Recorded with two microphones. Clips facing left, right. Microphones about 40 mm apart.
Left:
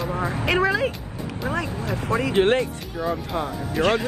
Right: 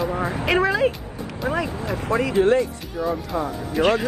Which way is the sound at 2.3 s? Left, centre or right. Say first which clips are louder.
Right 1 dB; left.